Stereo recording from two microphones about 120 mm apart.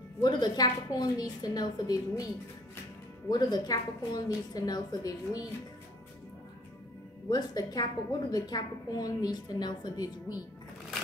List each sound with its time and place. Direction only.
0.2 s a woman's voice: 35° left (ahead or behind)
3.3 s a woman's voice: 35° left (ahead or behind)
7.2 s a woman's voice: 35° left (ahead or behind)